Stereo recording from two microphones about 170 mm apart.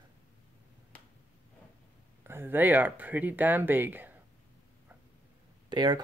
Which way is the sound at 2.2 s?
15° right (ahead or behind).